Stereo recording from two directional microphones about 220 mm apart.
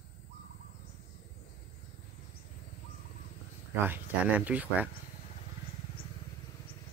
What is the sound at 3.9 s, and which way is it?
Speech, 5° right (ahead or behind).